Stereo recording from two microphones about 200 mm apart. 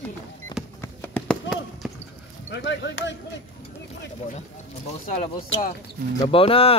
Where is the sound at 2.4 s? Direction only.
65° left (ahead or behind).